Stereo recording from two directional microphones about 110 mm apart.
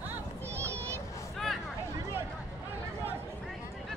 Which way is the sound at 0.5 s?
25° right (ahead or behind).